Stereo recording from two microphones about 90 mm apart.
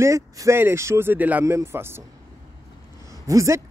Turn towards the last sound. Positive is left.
turn(degrees=-35)  # may be behind; listen again after turning